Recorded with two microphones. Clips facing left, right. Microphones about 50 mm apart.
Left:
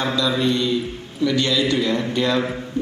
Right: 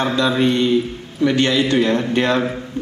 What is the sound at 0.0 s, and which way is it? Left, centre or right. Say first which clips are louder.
A man's voice: right 4 dB; right.